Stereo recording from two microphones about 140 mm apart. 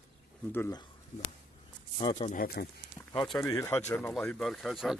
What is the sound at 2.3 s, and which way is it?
Speech, 90° left.